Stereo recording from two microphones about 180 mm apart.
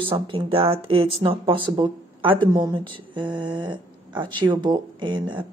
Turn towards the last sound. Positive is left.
turn(degrees=-25)  # may be behind; listen again after turning